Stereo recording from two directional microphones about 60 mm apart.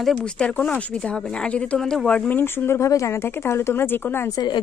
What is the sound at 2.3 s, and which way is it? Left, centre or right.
Speech, left.